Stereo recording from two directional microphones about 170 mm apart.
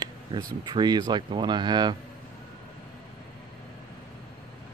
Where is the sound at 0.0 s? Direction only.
20° right (ahead or behind).